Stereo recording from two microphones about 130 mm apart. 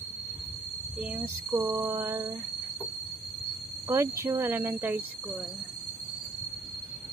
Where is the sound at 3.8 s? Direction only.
20° right (ahead or behind).